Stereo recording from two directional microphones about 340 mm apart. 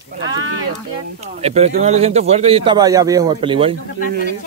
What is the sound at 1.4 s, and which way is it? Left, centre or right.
A man's voice, centre.